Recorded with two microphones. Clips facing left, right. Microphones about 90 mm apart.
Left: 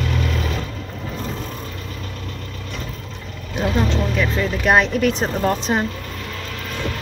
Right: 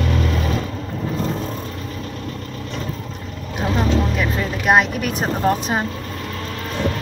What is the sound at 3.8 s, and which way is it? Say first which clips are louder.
Speech: right 1 dB; 10° right (ahead or behind).